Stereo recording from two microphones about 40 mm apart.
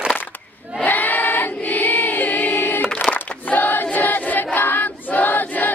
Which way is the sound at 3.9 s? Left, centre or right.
Left.